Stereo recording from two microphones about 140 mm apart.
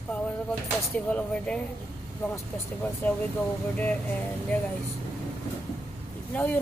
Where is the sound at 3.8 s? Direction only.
10° left (ahead or behind).